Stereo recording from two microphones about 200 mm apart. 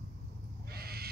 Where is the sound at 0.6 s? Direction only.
50° right (ahead or behind).